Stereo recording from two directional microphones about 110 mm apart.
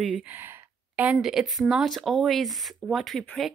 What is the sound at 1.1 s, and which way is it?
Speech, 5° right (ahead or behind).